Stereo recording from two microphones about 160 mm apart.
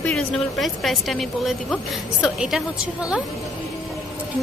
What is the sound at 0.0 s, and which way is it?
Speech, centre (ahead or behind).